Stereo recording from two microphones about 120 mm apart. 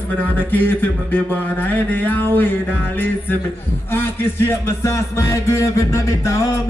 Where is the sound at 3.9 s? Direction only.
20° left (ahead or behind).